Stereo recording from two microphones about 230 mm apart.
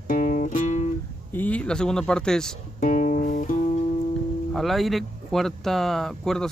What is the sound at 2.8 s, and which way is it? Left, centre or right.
Music, left.